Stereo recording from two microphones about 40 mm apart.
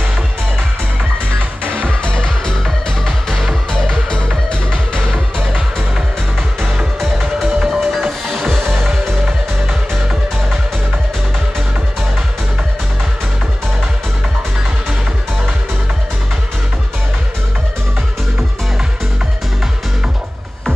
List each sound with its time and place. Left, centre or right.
2.1 s music: centre
4.1 s music: left
7.6 s music: centre